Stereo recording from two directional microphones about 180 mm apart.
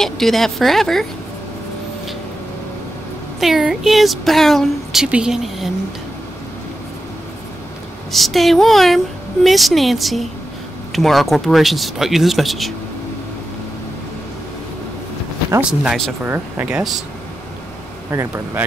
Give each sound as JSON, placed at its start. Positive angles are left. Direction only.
{"t": 0.0, "sound": "speech", "side_deg": 0}
{"t": 3.3, "sound": "speech", "side_deg": 0}
{"t": 8.1, "sound": "speech", "side_deg": 0}
{"t": 15.8, "sound": "speech", "side_deg": -5}
{"t": 18.1, "sound": "speech", "side_deg": -15}